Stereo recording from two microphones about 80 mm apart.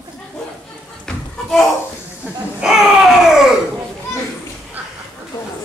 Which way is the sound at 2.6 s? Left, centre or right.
Centre.